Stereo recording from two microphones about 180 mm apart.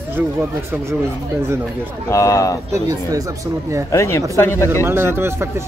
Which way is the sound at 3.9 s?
15° left (ahead or behind).